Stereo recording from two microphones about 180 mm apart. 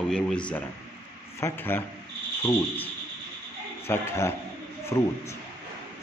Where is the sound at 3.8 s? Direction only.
15° left (ahead or behind).